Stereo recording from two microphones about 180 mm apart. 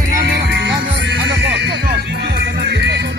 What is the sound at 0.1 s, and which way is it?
Music, 80° right.